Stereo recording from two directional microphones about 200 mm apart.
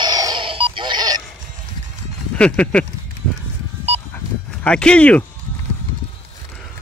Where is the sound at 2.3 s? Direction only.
5° left (ahead or behind).